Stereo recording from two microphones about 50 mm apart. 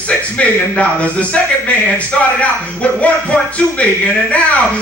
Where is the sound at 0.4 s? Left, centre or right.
Left.